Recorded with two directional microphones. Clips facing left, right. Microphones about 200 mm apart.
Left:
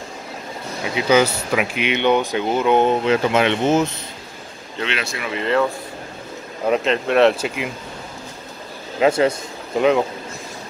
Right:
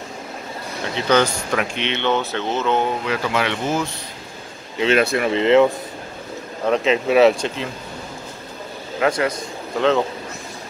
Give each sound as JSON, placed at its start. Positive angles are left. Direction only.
{"t": 0.9, "sound": "speech", "side_deg": 10}
{"t": 4.8, "sound": "speech", "side_deg": -50}
{"t": 5.3, "sound": "speech", "side_deg": -25}
{"t": 6.6, "sound": "speech", "side_deg": 0}
{"t": 9.0, "sound": "a man's voice", "side_deg": 25}
{"t": 9.8, "sound": "speech", "side_deg": 10}